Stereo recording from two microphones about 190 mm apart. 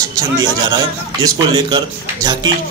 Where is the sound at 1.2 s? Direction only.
20° right (ahead or behind).